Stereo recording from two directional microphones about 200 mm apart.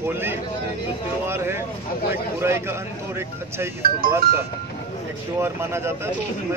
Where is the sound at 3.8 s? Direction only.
50° right (ahead or behind).